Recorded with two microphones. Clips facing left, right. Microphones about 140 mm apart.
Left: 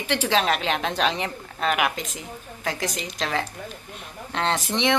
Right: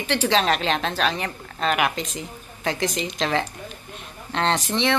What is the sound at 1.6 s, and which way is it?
A woman's voice, 5° left (ahead or behind).